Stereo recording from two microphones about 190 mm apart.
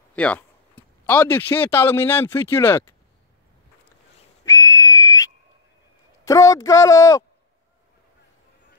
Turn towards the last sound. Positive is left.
turn(degrees=15)  # may be behind; listen again after turning